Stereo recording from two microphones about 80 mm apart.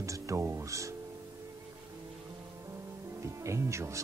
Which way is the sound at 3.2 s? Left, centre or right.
Right.